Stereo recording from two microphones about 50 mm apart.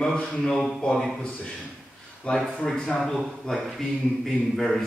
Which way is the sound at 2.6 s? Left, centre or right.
Centre.